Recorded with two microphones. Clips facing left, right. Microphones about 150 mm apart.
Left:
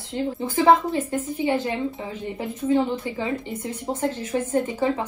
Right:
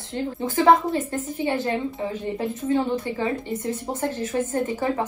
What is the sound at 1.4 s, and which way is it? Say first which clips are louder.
A woman's voice: even; 20° left (ahead or behind).